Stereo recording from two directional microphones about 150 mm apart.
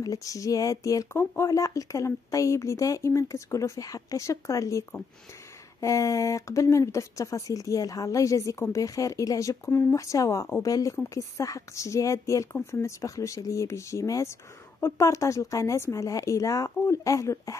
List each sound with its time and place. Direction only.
0.0 s speech: 25° left (ahead or behind)